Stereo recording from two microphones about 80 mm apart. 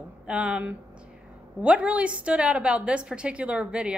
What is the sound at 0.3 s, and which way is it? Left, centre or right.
A woman's voice, centre.